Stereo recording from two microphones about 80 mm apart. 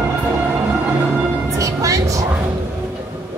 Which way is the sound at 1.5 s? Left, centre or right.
Right.